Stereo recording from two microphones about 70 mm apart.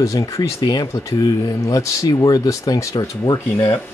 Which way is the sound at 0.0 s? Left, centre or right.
Left.